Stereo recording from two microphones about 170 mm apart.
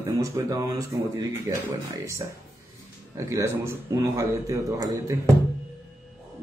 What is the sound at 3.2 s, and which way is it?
A man's voice, 15° right (ahead or behind).